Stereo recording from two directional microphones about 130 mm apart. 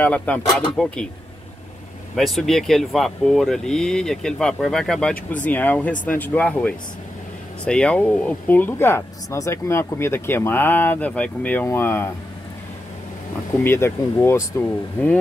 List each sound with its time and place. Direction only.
0.0 s speech: 10° left (ahead or behind)
2.1 s speech: centre (ahead or behind); by 12.1 s 20° left (ahead or behind)
13.7 s speech: 20° left (ahead or behind)